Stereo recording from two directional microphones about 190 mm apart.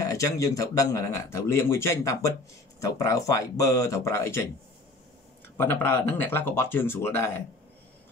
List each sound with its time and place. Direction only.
0.0 s speech: 15° left (ahead or behind)
5.6 s speech: 10° left (ahead or behind)